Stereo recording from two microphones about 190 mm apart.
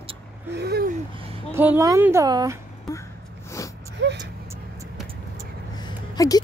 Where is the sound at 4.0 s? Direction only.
65° right (ahead or behind).